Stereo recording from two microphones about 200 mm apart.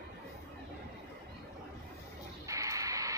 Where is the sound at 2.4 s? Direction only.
15° right (ahead or behind).